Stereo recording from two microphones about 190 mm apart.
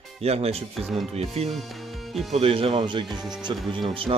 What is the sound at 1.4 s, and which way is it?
Speech, 35° right (ahead or behind).